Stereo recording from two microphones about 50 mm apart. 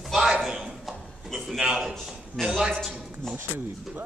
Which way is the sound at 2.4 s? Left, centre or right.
Centre.